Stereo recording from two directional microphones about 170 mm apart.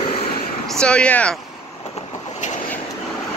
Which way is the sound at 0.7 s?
5° left (ahead or behind).